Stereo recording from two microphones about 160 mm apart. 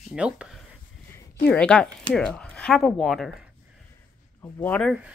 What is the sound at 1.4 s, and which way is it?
Speech, 5° left (ahead or behind).